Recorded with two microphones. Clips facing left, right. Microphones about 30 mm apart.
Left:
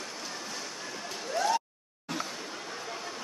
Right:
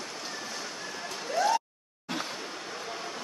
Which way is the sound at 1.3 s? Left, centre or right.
Centre.